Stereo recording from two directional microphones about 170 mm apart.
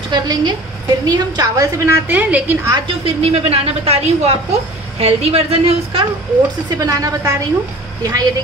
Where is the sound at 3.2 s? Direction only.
35° right (ahead or behind).